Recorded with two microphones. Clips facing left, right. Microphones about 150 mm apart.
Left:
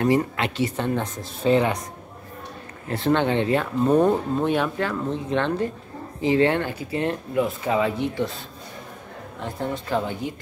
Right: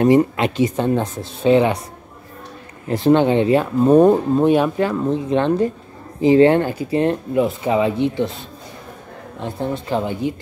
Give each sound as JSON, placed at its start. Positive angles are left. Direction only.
{"t": 0.0, "sound": "speech", "side_deg": -20}
{"t": 1.2, "sound": "speech", "side_deg": -20}
{"t": 2.9, "sound": "speech", "side_deg": -15}
{"t": 6.3, "sound": "speech", "side_deg": -40}
{"t": 9.4, "sound": "speech", "side_deg": -25}